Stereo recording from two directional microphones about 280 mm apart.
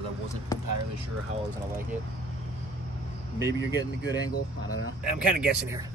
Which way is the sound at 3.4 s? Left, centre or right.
Right.